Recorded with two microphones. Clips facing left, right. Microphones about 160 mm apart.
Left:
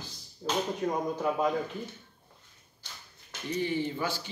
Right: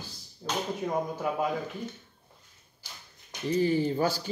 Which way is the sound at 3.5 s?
40° right (ahead or behind).